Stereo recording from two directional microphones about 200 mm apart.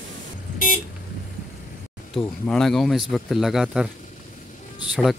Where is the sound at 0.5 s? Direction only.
40° left (ahead or behind).